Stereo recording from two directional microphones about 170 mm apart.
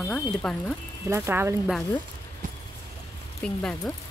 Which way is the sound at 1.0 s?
15° right (ahead or behind).